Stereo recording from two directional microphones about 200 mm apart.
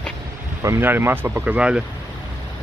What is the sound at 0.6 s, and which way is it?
Speech, 15° right (ahead or behind).